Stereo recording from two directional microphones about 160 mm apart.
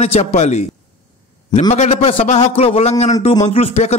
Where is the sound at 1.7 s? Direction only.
45° left (ahead or behind).